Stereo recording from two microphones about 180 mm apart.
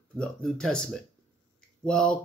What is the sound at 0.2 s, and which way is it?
Speech, 5° left (ahead or behind).